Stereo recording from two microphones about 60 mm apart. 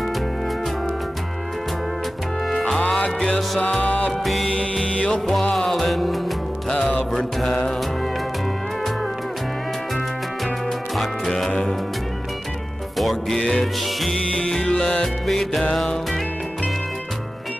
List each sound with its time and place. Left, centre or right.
3.2 s music: centre
3.8 s music: left
4.2 s music: centre
4.8 s music: centre
7.1 s mantra: centre
11.0 s music: centre
12.9 s music: centre
15.2 s music: centre